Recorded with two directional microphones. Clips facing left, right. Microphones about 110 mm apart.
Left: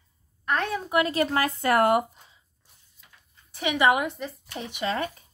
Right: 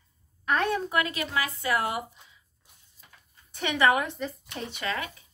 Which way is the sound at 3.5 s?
10° left (ahead or behind).